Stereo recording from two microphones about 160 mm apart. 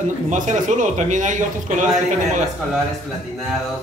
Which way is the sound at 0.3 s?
50° right (ahead or behind).